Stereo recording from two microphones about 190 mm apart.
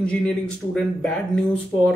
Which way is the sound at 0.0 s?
5° left (ahead or behind).